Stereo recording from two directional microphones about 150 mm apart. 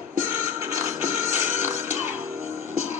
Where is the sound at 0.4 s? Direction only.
20° right (ahead or behind).